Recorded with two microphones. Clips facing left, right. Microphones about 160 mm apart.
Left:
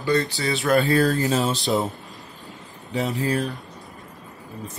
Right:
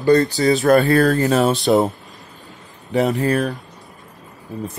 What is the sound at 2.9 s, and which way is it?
Speech, 60° right (ahead or behind).